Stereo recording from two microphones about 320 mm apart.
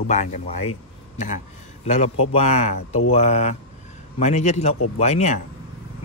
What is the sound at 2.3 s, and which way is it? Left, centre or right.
Speech, left.